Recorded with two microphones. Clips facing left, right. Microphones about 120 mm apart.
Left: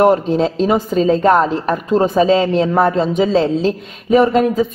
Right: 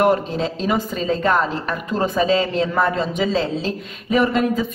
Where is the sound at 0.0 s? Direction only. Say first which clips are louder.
Left 5 dB; 40° left (ahead or behind).